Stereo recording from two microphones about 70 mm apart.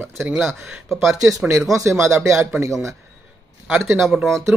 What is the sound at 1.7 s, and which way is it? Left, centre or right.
Speech, right.